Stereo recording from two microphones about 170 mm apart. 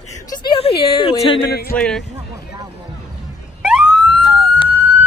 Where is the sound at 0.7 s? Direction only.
35° left (ahead or behind).